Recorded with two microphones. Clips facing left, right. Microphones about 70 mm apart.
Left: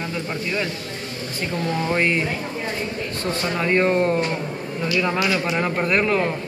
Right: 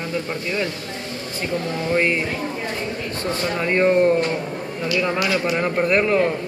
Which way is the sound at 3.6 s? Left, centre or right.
Centre.